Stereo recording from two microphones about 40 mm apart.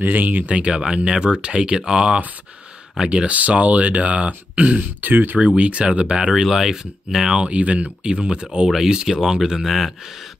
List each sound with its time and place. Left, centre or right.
0.0 s speech: right
0.7 s speech: right
3.3 s speech: right
5.0 s speech: right
5.6 s speech: right
6.3 s speech: centre
7.3 s speech: right
8.6 s speech: centre